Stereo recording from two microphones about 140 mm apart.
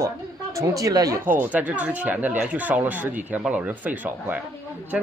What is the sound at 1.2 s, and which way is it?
Speech, 15° right (ahead or behind).